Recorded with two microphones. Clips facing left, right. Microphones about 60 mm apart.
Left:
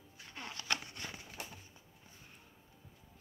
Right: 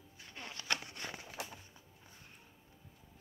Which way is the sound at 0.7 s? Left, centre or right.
Right.